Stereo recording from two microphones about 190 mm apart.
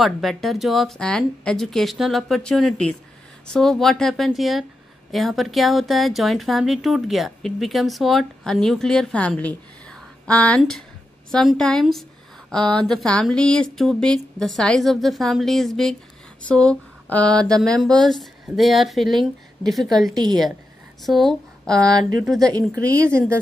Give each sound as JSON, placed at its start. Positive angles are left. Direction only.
{"t": 0.0, "sound": "speech", "side_deg": 0}
{"t": 22.4, "sound": "speech", "side_deg": -20}